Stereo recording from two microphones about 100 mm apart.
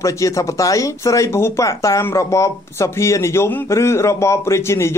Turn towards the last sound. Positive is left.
turn(degrees=25)  # may be behind; listen again after turning